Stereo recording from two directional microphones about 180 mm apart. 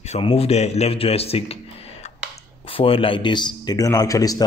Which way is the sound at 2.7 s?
30° left (ahead or behind).